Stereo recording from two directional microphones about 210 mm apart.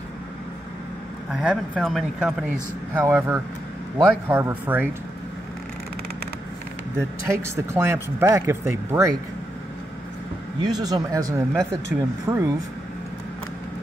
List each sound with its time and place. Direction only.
1.3 s speech: 5° right (ahead or behind)
7.2 s speech: 15° right (ahead or behind)
10.6 s speech: 20° right (ahead or behind)